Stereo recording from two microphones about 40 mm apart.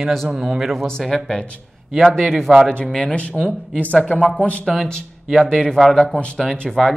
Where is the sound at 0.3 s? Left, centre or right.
Centre.